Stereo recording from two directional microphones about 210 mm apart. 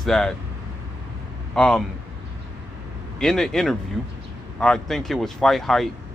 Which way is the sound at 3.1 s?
Centre (ahead or behind).